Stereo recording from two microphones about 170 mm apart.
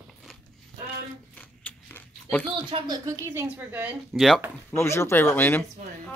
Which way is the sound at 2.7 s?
25° right (ahead or behind).